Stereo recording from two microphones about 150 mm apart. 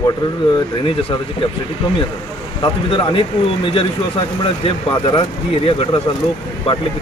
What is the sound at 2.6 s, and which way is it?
Speech, 30° left (ahead or behind).